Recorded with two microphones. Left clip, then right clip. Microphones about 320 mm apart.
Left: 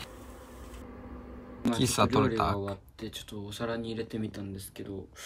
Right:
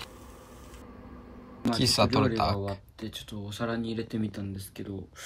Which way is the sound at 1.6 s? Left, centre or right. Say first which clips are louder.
Right 2 dB; centre.